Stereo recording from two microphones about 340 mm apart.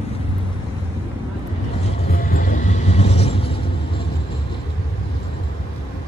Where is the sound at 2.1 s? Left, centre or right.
Left.